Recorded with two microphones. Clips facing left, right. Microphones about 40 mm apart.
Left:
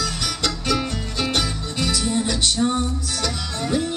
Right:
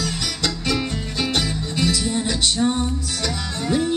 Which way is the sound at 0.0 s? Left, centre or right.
Centre.